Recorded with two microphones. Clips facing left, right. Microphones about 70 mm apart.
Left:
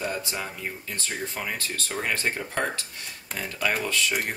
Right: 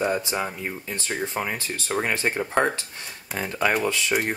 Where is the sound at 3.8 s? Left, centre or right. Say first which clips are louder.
Right 3 dB; centre.